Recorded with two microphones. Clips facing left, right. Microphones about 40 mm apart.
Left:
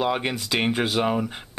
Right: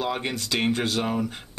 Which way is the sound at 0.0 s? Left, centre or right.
Centre.